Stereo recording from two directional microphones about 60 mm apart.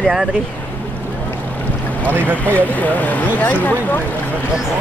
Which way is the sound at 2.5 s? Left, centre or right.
Left.